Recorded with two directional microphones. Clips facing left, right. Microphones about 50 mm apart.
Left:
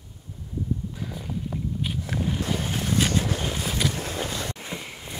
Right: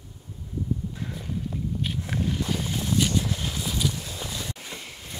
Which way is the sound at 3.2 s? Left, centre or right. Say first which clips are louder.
Left 2 dB; left.